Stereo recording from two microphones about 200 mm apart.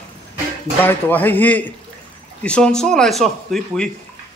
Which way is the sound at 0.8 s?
10° left (ahead or behind).